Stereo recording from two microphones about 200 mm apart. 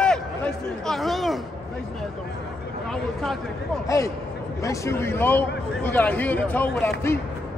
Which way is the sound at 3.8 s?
15° left (ahead or behind).